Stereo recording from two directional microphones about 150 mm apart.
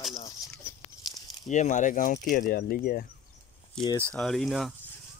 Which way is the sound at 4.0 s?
5° left (ahead or behind).